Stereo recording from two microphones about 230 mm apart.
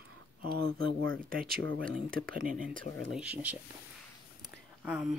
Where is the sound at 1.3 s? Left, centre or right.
Right.